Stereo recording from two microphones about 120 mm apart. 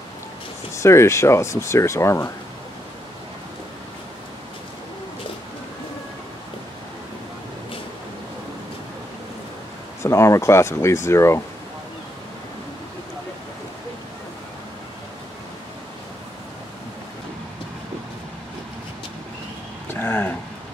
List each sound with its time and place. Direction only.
0.8 s speech: 25° left (ahead or behind)
10.0 s speech: 25° left (ahead or behind)
19.9 s a sound: 20° left (ahead or behind)